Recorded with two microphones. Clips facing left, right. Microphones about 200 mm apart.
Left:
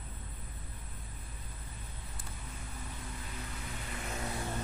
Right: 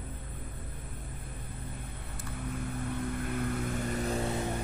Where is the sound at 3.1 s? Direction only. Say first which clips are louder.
Right 13 dB; 60° right (ahead or behind); by 4.5 s 25° right (ahead or behind).